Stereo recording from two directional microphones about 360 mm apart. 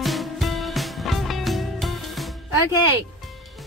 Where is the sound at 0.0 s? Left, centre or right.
Centre.